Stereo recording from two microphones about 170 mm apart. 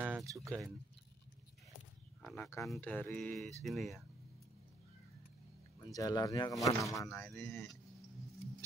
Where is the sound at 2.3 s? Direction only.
15° left (ahead or behind); by 4.0 s centre (ahead or behind).